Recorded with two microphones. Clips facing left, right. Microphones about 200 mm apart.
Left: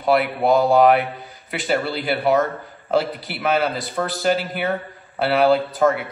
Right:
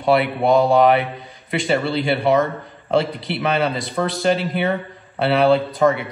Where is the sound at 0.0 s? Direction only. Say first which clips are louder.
Right 1 dB; centre (ahead or behind).